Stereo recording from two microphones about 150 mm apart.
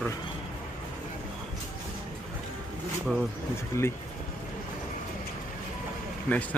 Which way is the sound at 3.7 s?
20° left (ahead or behind).